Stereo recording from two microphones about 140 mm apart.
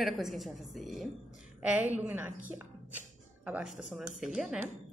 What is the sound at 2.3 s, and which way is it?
Speech, 70° right (ahead or behind).